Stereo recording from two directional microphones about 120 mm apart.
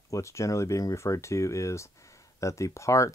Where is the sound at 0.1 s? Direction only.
25° left (ahead or behind).